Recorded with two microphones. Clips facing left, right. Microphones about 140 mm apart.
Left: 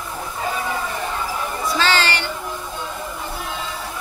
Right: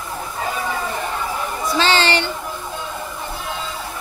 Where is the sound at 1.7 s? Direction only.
20° right (ahead or behind).